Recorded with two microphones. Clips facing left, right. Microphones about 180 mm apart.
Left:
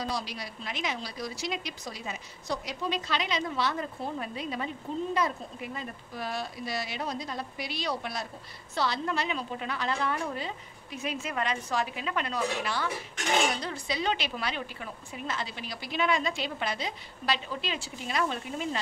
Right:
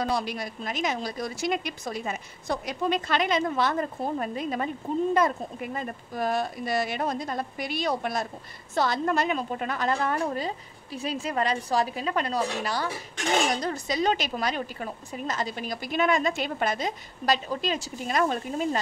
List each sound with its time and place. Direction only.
0.0 s a woman's voice: 55° right (ahead or behind)